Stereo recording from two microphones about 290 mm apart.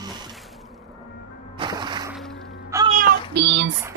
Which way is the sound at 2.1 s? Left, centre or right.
Centre.